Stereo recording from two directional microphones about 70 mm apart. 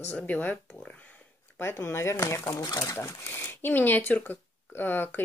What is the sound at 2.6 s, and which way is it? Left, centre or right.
Speech, left.